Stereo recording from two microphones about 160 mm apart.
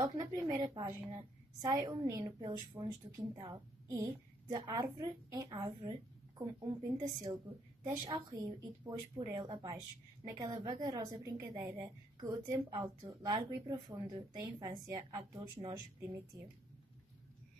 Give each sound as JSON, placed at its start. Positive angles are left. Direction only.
{"t": 0.0, "sound": "a woman's voice", "side_deg": -25}